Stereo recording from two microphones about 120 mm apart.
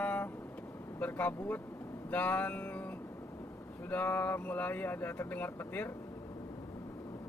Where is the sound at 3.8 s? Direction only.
15° left (ahead or behind).